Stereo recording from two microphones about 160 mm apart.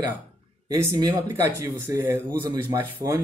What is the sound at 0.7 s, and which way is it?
Speech, 20° right (ahead or behind).